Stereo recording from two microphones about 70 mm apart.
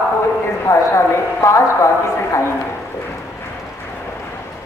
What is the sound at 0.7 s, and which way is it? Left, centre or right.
A woman's voice, left.